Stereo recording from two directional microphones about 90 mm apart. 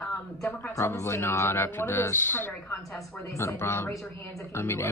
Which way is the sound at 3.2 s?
30° left (ahead or behind).